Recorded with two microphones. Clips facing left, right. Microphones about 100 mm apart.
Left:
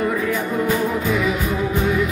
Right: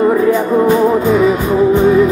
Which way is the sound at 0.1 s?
30° right (ahead or behind).